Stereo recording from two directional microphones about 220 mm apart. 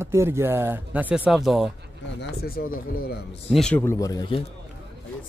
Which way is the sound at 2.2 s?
45° left (ahead or behind).